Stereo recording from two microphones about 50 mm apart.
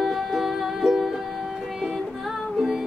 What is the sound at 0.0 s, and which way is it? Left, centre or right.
Music, centre.